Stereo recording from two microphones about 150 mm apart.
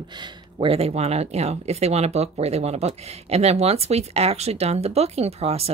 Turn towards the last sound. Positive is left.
turn(degrees=-40)  # may be behind; listen again after turning